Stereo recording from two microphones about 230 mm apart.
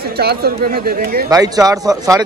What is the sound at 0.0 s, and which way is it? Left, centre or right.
Speech, right.